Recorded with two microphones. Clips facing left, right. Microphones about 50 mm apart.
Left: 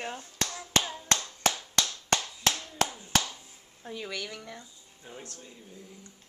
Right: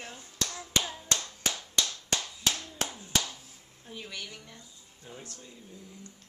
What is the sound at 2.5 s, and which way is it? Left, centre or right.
Clapping, centre.